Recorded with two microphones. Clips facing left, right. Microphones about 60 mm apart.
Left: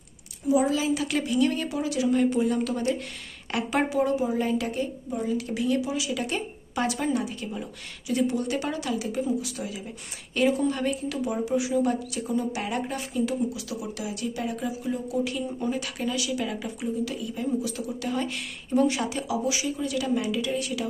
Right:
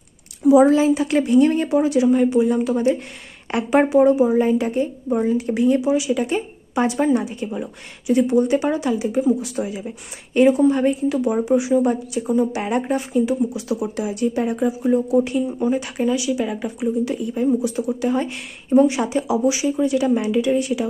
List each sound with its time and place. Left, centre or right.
0.7 s speech: right
0.9 s a woman's voice: right
2.0 s a woman's voice: centre
13.5 s speech: right
17.0 s a woman's voice: right